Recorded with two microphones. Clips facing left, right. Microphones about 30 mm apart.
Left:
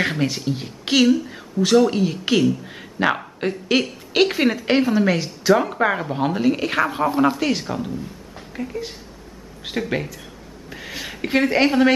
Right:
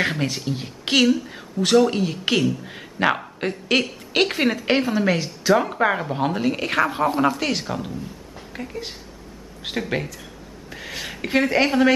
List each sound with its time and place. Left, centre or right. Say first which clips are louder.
0.0 s speech: left 2 dB; centre
8.5 s speech: left 4 dB; centre
9.6 s speech: left 1 dB; centre